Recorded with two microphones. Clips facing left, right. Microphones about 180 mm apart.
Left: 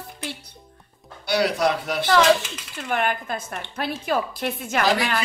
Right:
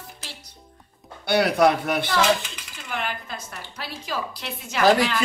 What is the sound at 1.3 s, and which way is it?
Speech, 55° right (ahead or behind).